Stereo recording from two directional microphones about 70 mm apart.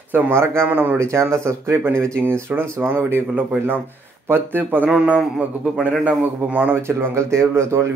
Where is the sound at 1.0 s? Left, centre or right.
Right.